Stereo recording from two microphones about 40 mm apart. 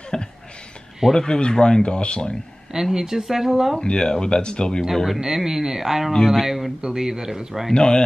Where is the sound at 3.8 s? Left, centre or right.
Left.